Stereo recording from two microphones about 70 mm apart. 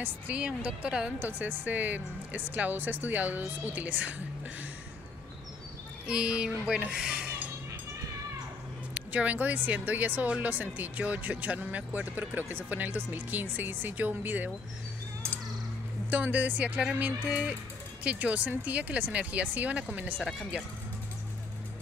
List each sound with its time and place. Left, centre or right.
0.0 s speech: centre
1.2 s speech: right
6.0 s speech: centre
8.9 s speech: right
16.1 s speech: right